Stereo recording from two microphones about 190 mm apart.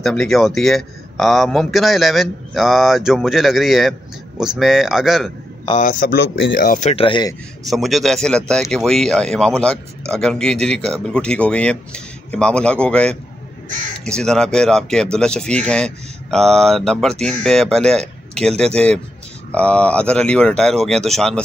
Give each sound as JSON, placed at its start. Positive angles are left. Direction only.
{"t": 0.0, "sound": "speech", "side_deg": 0}
{"t": 5.7, "sound": "speech", "side_deg": 45}
{"t": 6.7, "sound": "speech", "side_deg": 35}
{"t": 7.7, "sound": "speech", "side_deg": 0}
{"t": 19.5, "sound": "speech", "side_deg": 5}